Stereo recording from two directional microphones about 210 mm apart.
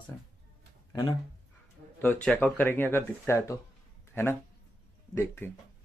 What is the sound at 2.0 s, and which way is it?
Speech, 5° left (ahead or behind).